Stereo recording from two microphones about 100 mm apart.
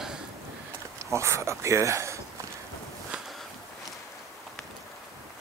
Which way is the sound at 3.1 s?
Centre (ahead or behind).